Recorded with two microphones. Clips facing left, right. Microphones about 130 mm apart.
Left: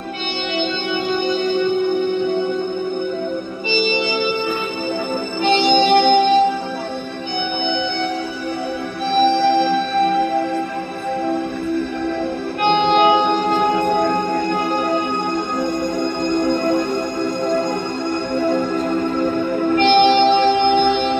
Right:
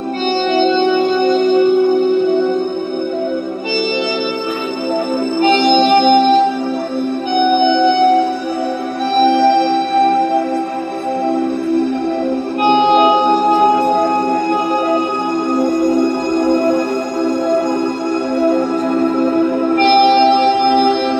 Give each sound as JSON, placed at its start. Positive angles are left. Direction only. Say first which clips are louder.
{"t": 0.6, "sound": "music", "louder": "right 9 dB", "side_deg": -45}
{"t": 5.4, "sound": "music", "louder": "right 3 dB", "side_deg": -50}
{"t": 7.6, "sound": "music", "louder": "right 10 dB", "side_deg": -50}
{"t": 9.2, "sound": "music", "louder": "right 4 dB", "side_deg": -45}
{"t": 12.9, "sound": "music", "louder": "right 3 dB", "side_deg": -40}
{"t": 19.7, "sound": "music", "louder": "right 2 dB", "side_deg": -50}